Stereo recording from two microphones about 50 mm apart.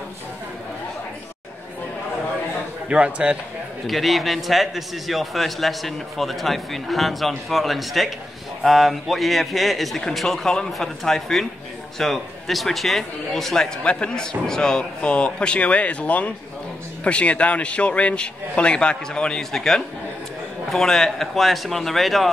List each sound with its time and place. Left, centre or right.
2.9 s a man's voice: right
3.8 s a man's voice: centre
13.8 s speech: left
19.5 s a man's voice: centre